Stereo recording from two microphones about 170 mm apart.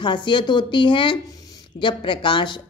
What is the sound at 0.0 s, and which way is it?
A woman's voice, 30° left (ahead or behind).